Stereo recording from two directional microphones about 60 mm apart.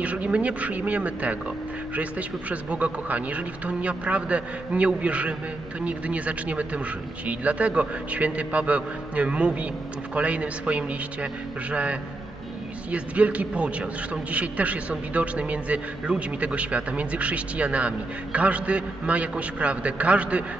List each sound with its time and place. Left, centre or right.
0.0 s a man's voice: right